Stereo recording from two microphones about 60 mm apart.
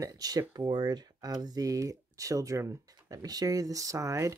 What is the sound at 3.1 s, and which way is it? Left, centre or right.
Speech, right.